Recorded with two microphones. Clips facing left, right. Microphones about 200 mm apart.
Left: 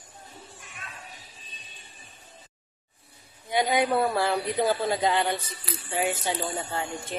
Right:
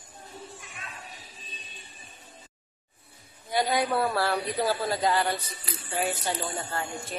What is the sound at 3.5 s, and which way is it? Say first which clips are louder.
A man's voice: left 2 dB; 20° left (ahead or behind).